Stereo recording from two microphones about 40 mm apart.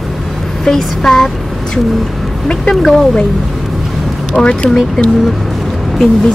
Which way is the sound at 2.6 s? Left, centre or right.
Centre.